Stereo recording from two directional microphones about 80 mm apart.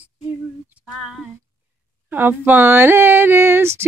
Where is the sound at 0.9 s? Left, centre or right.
Centre.